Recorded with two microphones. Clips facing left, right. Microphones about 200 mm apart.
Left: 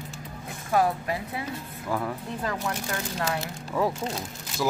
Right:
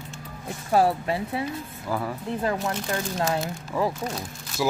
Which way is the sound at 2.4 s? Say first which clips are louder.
Right 5 dB; 25° right (ahead or behind).